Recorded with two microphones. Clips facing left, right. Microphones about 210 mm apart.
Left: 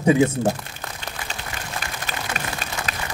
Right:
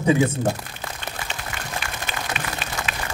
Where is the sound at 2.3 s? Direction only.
40° left (ahead or behind).